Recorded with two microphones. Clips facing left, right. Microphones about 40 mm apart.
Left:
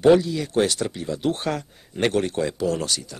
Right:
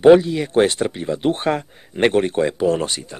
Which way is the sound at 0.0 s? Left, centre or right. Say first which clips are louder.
Right 5 dB; right.